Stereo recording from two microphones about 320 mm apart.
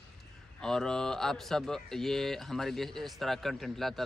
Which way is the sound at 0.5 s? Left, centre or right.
Centre.